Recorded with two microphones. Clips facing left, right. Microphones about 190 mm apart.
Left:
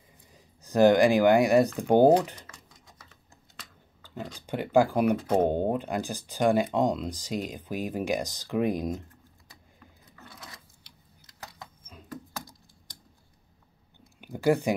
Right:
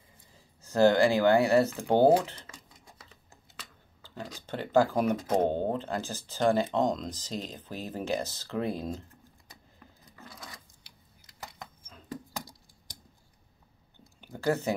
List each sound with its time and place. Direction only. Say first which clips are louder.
0.3 s speech: left 5 dB; 15° left (ahead or behind)
4.0 s speech: left 3 dB; 15° left (ahead or behind)
14.2 s a sound: left 5 dB; 15° left (ahead or behind)